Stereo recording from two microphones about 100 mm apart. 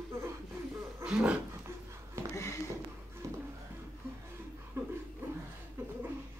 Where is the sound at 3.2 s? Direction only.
30° right (ahead or behind).